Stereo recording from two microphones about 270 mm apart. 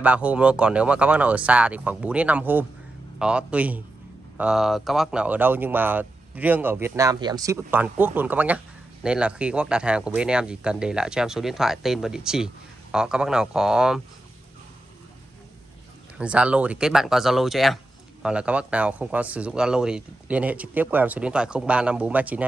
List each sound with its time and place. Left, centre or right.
0.0 s speech: centre
16.2 s speech: centre